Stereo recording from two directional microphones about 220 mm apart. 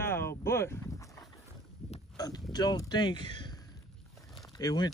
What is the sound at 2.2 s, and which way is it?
Speech, 20° left (ahead or behind).